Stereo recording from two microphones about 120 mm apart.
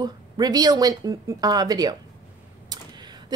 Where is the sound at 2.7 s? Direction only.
35° right (ahead or behind).